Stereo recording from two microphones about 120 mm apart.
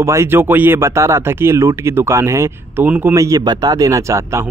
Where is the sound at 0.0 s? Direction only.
25° right (ahead or behind).